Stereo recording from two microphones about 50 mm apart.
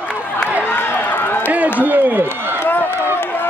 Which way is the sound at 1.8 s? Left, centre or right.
Right.